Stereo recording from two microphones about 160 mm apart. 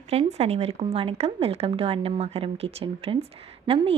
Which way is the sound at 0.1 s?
40° right (ahead or behind).